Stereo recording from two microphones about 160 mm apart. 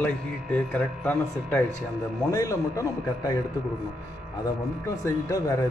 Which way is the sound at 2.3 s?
20° left (ahead or behind).